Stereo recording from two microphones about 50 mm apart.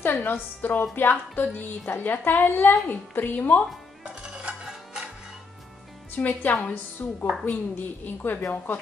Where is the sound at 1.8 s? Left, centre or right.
Left.